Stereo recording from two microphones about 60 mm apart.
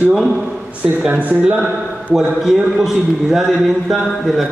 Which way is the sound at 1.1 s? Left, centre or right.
Right.